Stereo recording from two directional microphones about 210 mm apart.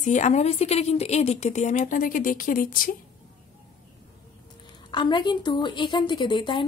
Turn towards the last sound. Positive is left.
turn(degrees=25)  # may be behind; listen again after turning